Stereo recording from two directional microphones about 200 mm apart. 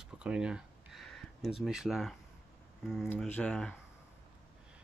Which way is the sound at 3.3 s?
5° left (ahead or behind).